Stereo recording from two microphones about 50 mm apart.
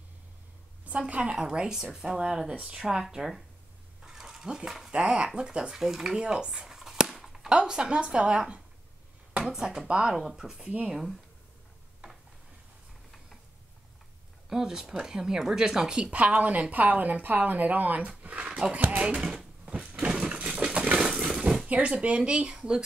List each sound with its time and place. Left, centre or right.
0.8 s a woman's voice: right; by 3.4 s centre
4.0 s a sound: centre
4.9 s speech: right
5.8 s chop: centre
7.4 s speech: centre
9.6 s speech: centre
10.6 s speech: right
14.5 s speech: centre
16.0 s a woman's voice: right
18.0 s a sound: right
18.9 s speech: right
19.9 s a sound: right
21.6 s speech: right